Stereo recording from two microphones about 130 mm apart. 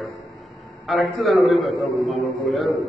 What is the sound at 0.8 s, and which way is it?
A man's voice, centre (ahead or behind).